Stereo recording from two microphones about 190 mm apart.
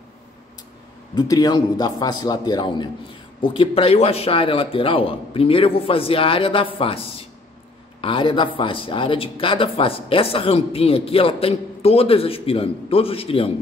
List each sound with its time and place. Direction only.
1.1 s speech: 20° left (ahead or behind)